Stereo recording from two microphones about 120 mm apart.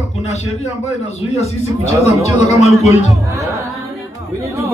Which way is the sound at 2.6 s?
60° left (ahead or behind).